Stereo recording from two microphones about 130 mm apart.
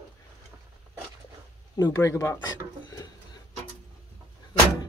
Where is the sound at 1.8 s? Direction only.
25° left (ahead or behind).